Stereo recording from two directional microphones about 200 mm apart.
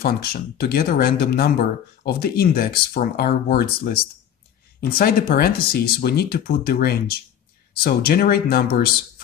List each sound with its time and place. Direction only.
0.0 s speech: 50° left (ahead or behind)